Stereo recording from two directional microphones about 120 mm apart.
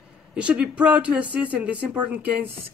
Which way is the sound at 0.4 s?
10° right (ahead or behind).